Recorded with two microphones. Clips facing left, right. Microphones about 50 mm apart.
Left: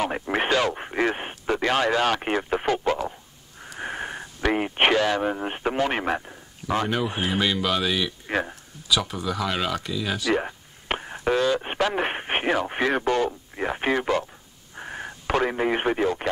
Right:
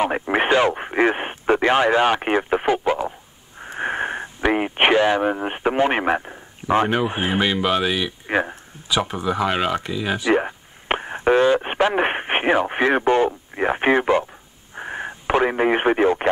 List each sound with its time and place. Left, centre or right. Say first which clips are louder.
0.0 s speech: right 5 dB; right
3.5 s wheeze: right 7 dB; right
4.5 s speech: right 3 dB; centre